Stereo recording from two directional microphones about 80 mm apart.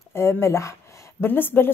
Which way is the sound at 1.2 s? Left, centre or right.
Left.